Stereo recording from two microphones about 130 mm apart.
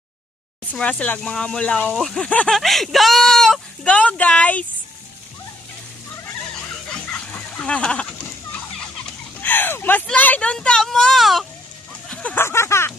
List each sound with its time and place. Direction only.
0.7 s speech: 10° left (ahead or behind)
6.9 s a sound: 10° left (ahead or behind)
9.4 s speech: 15° left (ahead or behind)
12.1 s speech: 10° left (ahead or behind)